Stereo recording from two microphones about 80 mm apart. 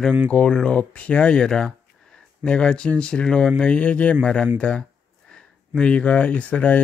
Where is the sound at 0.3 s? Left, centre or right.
Centre.